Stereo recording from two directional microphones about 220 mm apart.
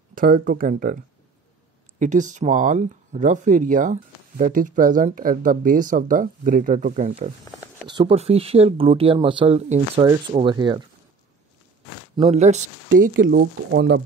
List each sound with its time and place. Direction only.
0.1 s speech: 40° right (ahead or behind)
2.0 s speech: 35° right (ahead or behind); by 10.8 s 20° right (ahead or behind)
12.2 s speech: 30° right (ahead or behind); by 14.0 s 50° right (ahead or behind)